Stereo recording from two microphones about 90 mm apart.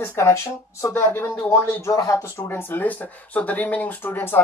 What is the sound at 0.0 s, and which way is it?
Speech, 30° left (ahead or behind).